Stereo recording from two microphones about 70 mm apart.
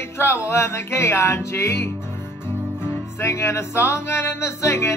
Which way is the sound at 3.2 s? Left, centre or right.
Left.